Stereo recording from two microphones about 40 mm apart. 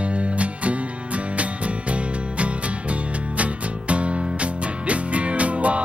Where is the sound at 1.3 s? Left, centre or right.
Right.